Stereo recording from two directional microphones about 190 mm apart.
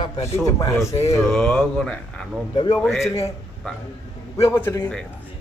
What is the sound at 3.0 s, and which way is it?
Speech, 15° left (ahead or behind).